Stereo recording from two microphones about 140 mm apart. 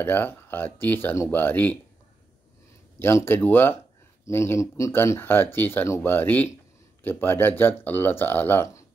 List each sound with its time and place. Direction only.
0.0 s speech: 15° left (ahead or behind)
3.0 s speech: 15° left (ahead or behind)